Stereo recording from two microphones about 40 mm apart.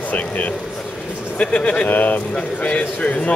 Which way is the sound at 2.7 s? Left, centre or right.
Left.